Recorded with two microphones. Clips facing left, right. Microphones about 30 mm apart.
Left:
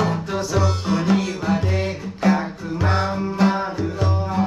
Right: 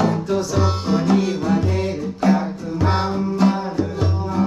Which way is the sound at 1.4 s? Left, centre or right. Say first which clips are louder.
Right 2 dB; centre.